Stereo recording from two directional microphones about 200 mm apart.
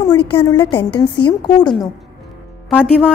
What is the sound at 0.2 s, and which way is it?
Speech, 25° left (ahead or behind).